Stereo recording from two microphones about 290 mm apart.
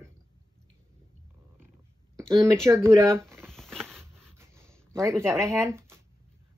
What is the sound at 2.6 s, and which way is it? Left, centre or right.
Speech, centre.